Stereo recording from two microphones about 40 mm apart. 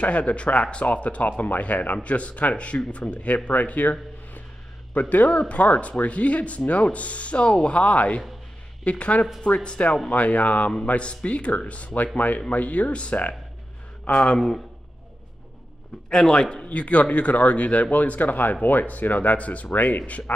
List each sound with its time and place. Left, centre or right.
0.0 s speech: left
5.5 s a man's voice: left
14.2 s a man's voice: left
16.1 s a man's voice: centre
16.6 s speech: left